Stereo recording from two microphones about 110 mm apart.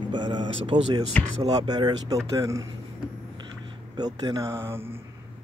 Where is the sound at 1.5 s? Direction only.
40° right (ahead or behind).